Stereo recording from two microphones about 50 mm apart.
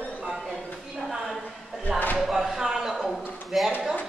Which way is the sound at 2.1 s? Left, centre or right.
Centre.